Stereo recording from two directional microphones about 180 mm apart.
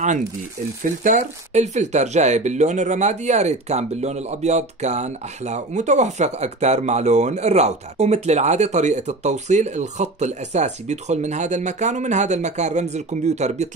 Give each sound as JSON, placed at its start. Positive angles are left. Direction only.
{"t": 1.0, "sound": "speech", "side_deg": -40}